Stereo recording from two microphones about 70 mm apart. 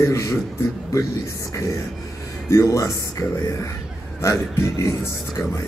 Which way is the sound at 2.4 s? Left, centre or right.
Left.